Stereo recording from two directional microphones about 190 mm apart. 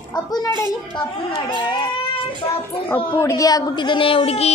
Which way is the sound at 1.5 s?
25° left (ahead or behind).